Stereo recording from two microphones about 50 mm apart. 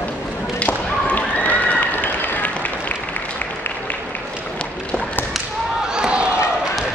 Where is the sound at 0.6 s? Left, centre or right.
Left.